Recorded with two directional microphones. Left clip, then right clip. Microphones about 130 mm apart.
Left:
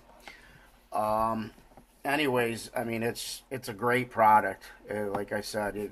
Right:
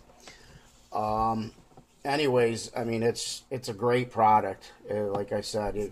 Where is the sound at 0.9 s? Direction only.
20° right (ahead or behind).